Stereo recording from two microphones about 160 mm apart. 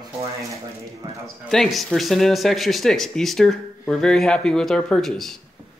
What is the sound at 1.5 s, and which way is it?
Speech, centre (ahead or behind).